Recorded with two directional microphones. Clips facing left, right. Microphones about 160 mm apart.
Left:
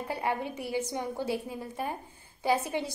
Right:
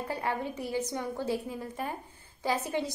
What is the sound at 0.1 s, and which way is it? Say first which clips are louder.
A woman's voice: left 2 dB; 15° left (ahead or behind).